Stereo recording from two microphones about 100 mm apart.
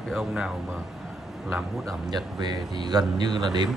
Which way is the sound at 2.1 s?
45° right (ahead or behind).